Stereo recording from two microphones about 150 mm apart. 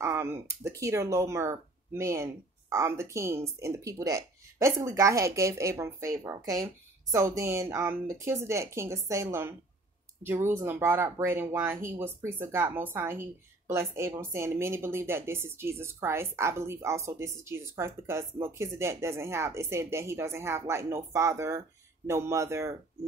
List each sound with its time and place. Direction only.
0.0 s speech: 15° right (ahead or behind)